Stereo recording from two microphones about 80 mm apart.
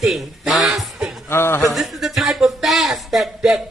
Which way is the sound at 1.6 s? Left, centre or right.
Centre.